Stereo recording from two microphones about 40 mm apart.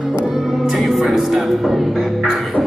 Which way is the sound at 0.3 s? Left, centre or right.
Centre.